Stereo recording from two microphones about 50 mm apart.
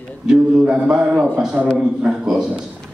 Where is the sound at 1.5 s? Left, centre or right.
Right.